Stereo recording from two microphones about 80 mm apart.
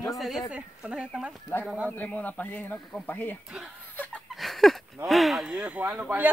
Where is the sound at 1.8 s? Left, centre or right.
Left.